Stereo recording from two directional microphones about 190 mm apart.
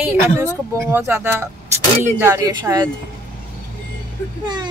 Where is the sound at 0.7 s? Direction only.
10° right (ahead or behind).